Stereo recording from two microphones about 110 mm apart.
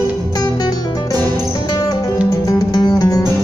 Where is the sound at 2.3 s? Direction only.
30° left (ahead or behind).